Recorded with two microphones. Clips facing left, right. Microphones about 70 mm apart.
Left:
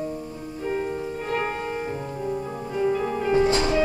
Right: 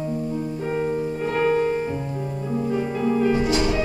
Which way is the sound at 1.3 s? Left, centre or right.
Right.